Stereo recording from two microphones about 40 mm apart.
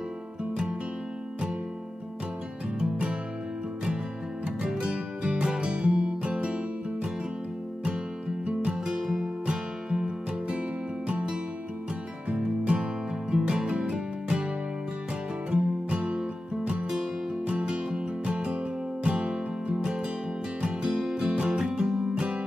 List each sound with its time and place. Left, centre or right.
4.6 s music: centre
8.7 s music: centre
15.5 s music: right
17.5 s music: right